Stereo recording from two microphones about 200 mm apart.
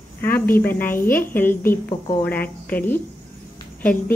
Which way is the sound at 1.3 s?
10° left (ahead or behind).